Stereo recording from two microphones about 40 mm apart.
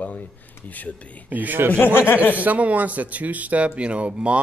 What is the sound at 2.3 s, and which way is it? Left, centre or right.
Speech, right.